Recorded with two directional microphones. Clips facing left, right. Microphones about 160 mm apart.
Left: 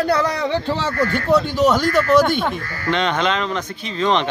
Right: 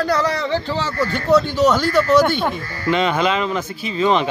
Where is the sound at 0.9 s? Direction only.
55° left (ahead or behind).